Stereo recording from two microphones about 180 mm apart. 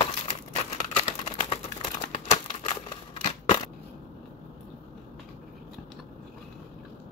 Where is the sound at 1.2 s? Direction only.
40° left (ahead or behind).